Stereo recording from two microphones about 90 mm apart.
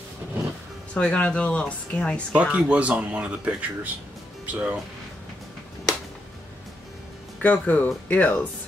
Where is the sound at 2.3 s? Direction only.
15° right (ahead or behind).